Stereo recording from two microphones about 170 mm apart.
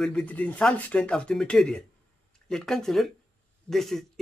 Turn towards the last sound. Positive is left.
turn(degrees=0)  # may be behind; listen again after turning